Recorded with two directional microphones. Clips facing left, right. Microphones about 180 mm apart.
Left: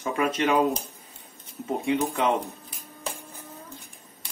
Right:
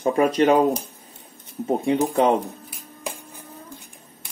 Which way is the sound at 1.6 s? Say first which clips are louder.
Right 5 dB; 35° right (ahead or behind).